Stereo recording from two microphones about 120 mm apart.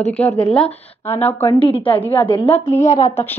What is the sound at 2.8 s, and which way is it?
Speech, 75° left (ahead or behind).